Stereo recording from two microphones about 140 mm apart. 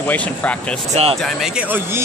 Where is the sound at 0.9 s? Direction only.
45° right (ahead or behind).